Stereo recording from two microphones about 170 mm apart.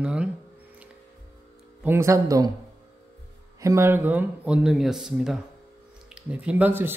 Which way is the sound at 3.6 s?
15° right (ahead or behind).